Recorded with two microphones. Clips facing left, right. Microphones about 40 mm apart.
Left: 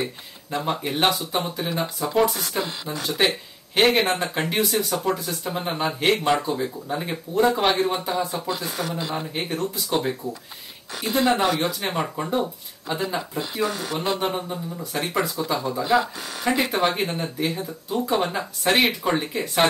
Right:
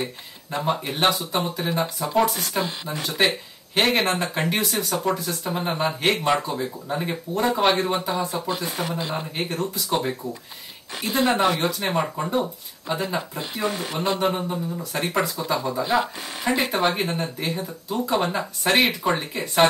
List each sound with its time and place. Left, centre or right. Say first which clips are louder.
0.5 s speech: right 1 dB; centre
8.5 s speech: right 1 dB; right
9.1 s speech: even; centre
11.2 s speech: right 1 dB; centre
13.6 s speech: even; right
14.2 s speech: right 2 dB; centre